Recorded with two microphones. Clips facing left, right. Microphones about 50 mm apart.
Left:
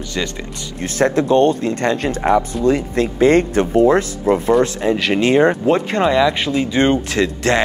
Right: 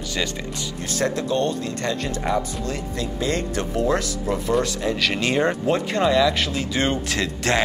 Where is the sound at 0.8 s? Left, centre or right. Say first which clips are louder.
Left 8 dB; left.